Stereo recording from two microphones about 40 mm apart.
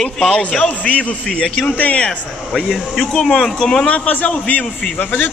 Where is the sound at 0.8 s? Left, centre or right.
Left.